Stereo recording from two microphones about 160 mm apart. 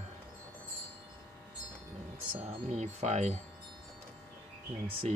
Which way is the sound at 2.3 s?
40° right (ahead or behind).